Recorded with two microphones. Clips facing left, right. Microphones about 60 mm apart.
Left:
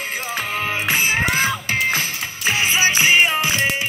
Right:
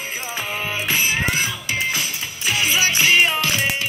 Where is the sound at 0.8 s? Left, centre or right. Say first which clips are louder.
Left 1 dB; left.